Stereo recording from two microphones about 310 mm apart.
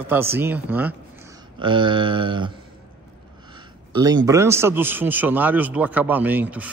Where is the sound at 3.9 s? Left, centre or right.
Centre.